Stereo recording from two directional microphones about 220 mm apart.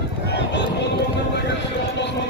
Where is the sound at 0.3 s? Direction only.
50° left (ahead or behind).